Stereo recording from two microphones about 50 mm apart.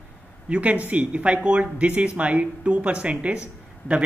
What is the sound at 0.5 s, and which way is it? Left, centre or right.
Speech, right.